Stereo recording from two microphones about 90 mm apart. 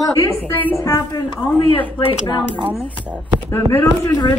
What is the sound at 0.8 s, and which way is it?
Speech, 30° left (ahead or behind).